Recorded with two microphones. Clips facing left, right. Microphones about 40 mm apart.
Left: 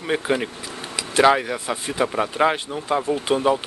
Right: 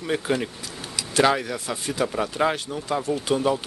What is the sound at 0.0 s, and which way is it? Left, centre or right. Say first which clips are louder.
Speech: left 2 dB; left.